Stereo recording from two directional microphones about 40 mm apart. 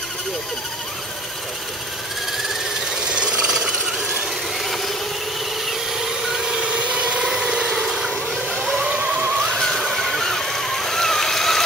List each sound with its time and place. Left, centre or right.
3.3 s rub: centre
6.6 s vehicle: right
7.7 s boat: centre
8.8 s a sound: right
9.6 s vehicle: centre